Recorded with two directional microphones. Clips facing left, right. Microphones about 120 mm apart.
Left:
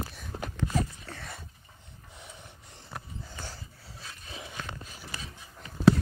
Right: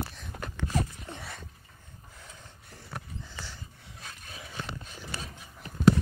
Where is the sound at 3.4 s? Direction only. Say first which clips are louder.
Left 2 dB; 35° left (ahead or behind).